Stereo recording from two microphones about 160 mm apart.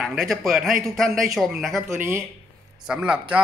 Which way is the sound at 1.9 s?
15° right (ahead or behind).